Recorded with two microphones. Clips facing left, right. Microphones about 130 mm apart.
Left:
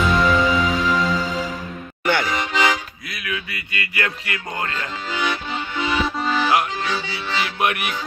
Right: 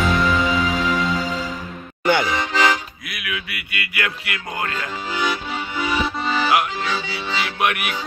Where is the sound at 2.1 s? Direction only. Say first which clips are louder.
Right 2 dB; 15° right (ahead or behind).